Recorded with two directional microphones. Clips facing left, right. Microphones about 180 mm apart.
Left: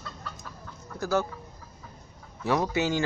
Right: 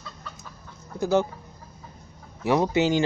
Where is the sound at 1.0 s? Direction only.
20° right (ahead or behind).